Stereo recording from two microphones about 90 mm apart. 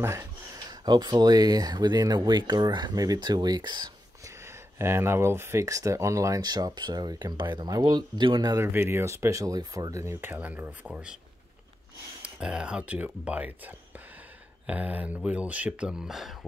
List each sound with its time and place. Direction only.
0.6 s speech: 50° right (ahead or behind)
4.5 s speech: 30° right (ahead or behind); by 8.5 s 60° right (ahead or behind)
8.5 s speech: 25° right (ahead or behind)
10.2 s speech: 20° right (ahead or behind)
12.2 s speech: 10° right (ahead or behind)